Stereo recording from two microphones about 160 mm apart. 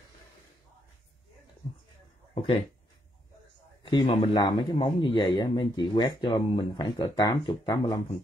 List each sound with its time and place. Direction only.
3.8 s a man's voice: 30° left (ahead or behind)